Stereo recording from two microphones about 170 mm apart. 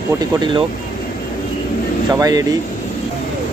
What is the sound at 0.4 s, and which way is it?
Speech, 30° right (ahead or behind).